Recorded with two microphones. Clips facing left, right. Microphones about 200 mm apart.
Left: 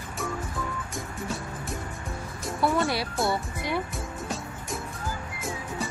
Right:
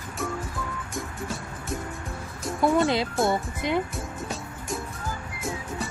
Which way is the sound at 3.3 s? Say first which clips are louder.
Right 3 dB; 20° right (ahead or behind).